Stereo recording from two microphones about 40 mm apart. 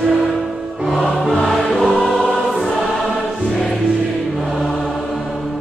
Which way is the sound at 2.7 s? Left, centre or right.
Centre.